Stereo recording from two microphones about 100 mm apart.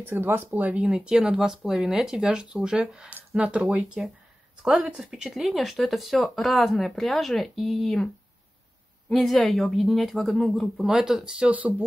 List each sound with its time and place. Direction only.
0.0 s speech: 20° right (ahead or behind); by 8.1 s 5° left (ahead or behind)
9.1 s speech: centre (ahead or behind)